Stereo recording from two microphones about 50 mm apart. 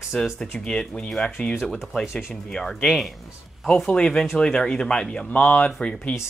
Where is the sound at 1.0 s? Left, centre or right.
Centre.